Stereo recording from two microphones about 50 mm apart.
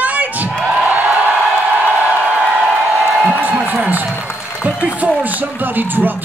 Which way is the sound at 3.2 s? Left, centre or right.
Right.